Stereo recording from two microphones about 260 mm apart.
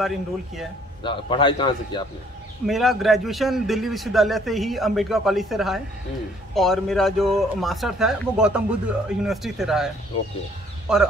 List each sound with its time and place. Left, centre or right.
0.0 s speech: centre
1.0 s a man's voice: centre
2.6 s speech: centre